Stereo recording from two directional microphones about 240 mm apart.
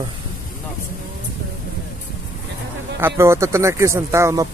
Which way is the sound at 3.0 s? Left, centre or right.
Centre.